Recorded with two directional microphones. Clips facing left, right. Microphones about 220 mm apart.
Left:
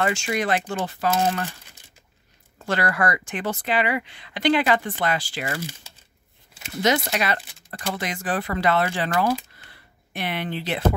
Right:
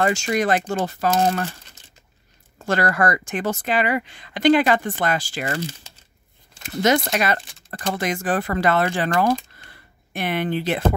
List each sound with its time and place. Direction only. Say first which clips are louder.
0.0 s speech: right 4 dB; 40° right (ahead or behind)
2.6 s speech: right 3 dB; 45° right (ahead or behind)
5.6 s speech: right 4 dB; 10° left (ahead or behind)
6.8 s speech: right 3 dB; 50° right (ahead or behind)
9.7 s a sound: right 6 dB; 50° right (ahead or behind)